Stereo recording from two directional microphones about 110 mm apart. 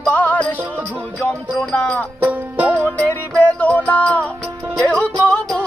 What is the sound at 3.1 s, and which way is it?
Music, 15° left (ahead or behind).